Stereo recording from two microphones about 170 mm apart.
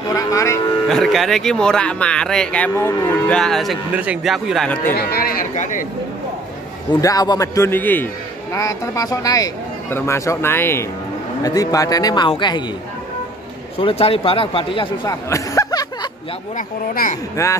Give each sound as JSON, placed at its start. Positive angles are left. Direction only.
{"t": 0.1, "sound": "speech", "side_deg": 20}
{"t": 0.8, "sound": "speech", "side_deg": 0}
{"t": 3.9, "sound": "speech", "side_deg": -10}
{"t": 4.9, "sound": "speech", "side_deg": 60}
{"t": 7.0, "sound": "speech", "side_deg": 20}
{"t": 13.7, "sound": "speech", "side_deg": 35}
{"t": 15.0, "sound": "a sound", "side_deg": 20}
{"t": 16.5, "sound": "speech", "side_deg": 50}